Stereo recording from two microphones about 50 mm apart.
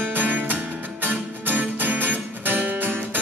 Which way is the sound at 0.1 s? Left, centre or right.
Right.